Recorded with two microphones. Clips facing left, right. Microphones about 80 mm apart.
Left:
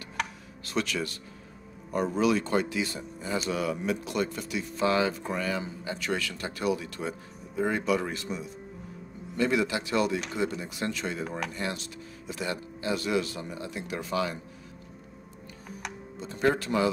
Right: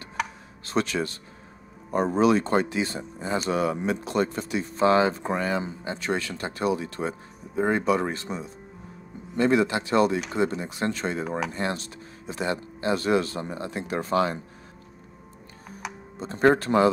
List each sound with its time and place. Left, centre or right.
0.2 s music: centre
0.7 s speech: right
11.2 s speech: centre
11.5 s speech: right
16.2 s speech: right